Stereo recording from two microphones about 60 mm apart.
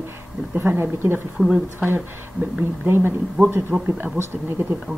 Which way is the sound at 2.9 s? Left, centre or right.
Right.